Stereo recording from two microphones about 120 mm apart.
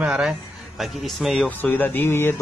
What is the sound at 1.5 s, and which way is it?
Speech, 15° left (ahead or behind).